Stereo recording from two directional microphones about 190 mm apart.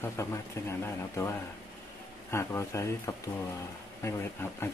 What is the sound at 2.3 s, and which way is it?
Speech, 15° left (ahead or behind).